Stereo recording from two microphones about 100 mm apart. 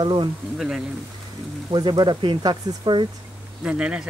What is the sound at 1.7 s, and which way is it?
Speech, 50° right (ahead or behind).